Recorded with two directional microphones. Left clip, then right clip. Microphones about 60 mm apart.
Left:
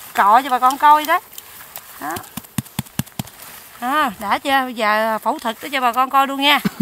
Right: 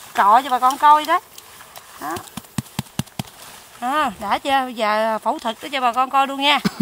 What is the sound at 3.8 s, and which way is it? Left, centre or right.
Speech, left.